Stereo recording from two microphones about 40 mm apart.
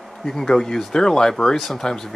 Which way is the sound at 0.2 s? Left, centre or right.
Centre.